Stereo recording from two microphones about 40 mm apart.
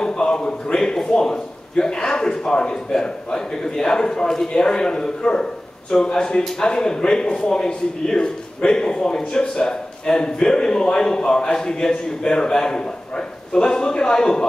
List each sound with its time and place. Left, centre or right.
0.0 s a man's voice: left